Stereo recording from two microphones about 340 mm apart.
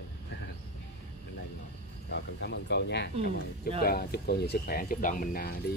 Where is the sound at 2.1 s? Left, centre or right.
Left.